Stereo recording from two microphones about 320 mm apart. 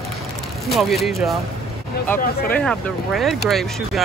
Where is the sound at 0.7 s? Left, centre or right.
Centre.